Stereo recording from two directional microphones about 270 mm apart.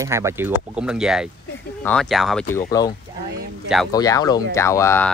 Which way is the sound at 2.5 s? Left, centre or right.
Centre.